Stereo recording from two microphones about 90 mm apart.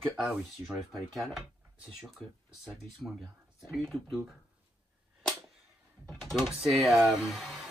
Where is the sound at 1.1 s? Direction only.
Centre (ahead or behind).